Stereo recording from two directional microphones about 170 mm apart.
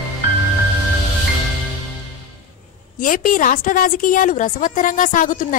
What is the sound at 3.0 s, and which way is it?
A woman's voice, 55° left (ahead or behind).